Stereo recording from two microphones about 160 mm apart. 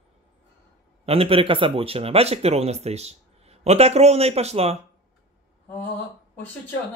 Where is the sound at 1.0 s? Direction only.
35° right (ahead or behind).